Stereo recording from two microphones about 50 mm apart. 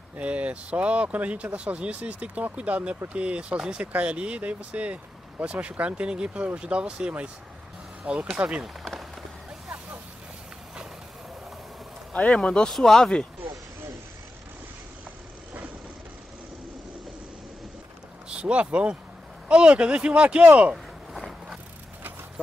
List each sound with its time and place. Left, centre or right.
0.2 s speech: right
12.1 s speech: left
12.6 s speech: centre
18.3 s speech: right
20.7 s a sound: centre